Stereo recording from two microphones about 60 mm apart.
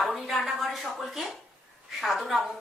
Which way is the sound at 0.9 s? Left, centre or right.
Centre.